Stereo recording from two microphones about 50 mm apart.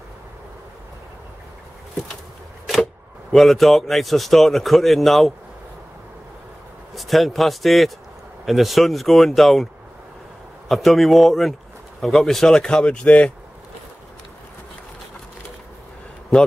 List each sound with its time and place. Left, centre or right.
3.3 s a man's voice: centre
7.0 s a man's voice: centre
10.7 s a man's voice: centre
12.5 s speech: centre